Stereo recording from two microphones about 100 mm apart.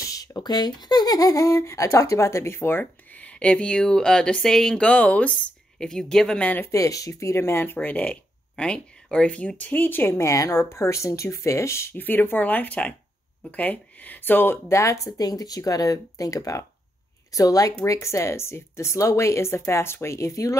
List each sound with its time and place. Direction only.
0.0 s speech: 35° left (ahead or behind); by 6.6 s 10° left (ahead or behind)
6.6 s speech: 35° left (ahead or behind)